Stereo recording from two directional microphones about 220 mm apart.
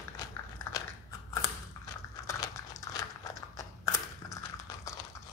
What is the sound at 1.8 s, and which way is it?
Crushing, 15° left (ahead or behind).